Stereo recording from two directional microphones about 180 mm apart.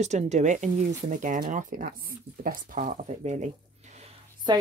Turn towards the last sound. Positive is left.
turn(degrees=-25)  # may be behind; listen again after turning